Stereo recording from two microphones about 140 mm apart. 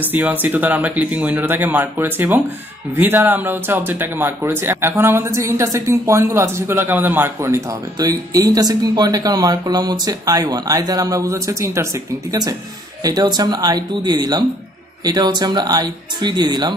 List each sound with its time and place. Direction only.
0.3 s speech: 10° right (ahead or behind); by 16.7 s 30° right (ahead or behind)